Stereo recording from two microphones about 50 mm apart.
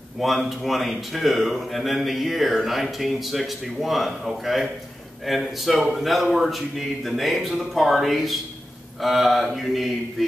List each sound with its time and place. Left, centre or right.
0.2 s speech: centre